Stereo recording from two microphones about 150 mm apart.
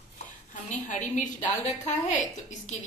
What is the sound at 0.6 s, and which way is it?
Speech, 55° left (ahead or behind).